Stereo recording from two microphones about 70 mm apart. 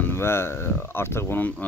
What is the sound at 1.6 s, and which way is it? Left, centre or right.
Speech, left.